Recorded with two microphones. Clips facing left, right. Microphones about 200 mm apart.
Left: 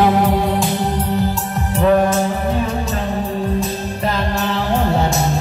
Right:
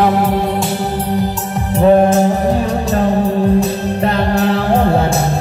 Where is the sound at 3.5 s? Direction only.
65° right (ahead or behind).